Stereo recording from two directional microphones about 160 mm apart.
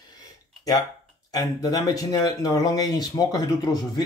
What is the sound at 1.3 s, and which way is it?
Speech, 25° left (ahead or behind).